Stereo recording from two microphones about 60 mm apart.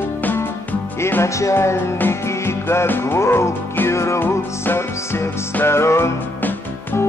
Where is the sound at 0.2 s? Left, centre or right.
Left.